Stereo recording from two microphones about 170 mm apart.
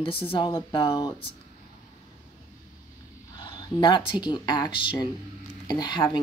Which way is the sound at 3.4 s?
25° left (ahead or behind).